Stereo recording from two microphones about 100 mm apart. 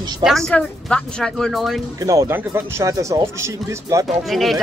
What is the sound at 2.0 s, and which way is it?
Speech, 30° right (ahead or behind).